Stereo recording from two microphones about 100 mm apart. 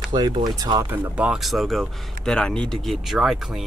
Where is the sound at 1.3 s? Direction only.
Centre (ahead or behind).